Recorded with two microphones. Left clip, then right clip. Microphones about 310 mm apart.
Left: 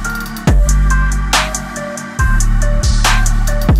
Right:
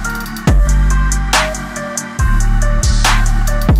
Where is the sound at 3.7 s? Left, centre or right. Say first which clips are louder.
Even; centre.